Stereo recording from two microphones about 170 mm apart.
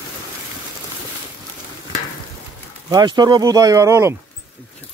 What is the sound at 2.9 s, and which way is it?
Speech, 25° right (ahead or behind).